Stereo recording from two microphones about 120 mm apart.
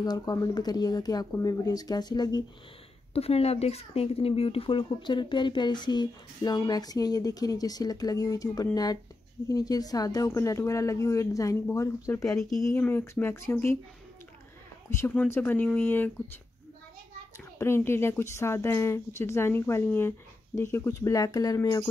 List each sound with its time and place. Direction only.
0.0 s speech: 35° left (ahead or behind)
3.2 s a woman's voice: 55° left (ahead or behind); by 12.4 s 25° left (ahead or behind)
12.4 s speech: 5° left (ahead or behind)
12.7 s a woman's voice: 20° left (ahead or behind)
14.9 s a woman's voice: 20° left (ahead or behind)
17.6 s a woman's voice: 20° left (ahead or behind)